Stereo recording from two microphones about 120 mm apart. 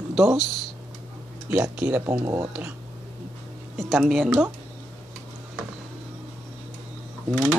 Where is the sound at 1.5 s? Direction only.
10° right (ahead or behind).